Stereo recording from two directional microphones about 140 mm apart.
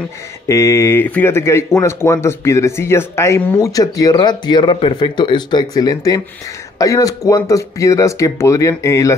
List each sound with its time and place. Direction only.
0.5 s speech: 20° left (ahead or behind)